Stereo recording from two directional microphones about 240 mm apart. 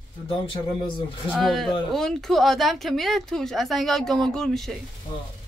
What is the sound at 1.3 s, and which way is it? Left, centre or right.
Speech, centre.